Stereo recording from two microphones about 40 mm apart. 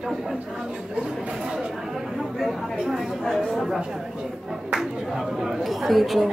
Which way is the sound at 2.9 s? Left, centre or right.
Centre.